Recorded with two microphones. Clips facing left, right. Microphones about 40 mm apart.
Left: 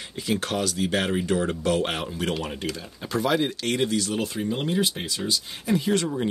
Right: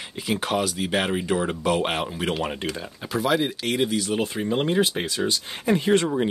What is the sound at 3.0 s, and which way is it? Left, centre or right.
Speech, centre.